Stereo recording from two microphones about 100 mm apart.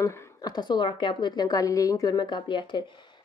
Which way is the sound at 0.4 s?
45° left (ahead or behind).